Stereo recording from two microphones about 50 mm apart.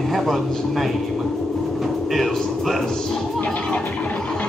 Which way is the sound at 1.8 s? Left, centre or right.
Centre.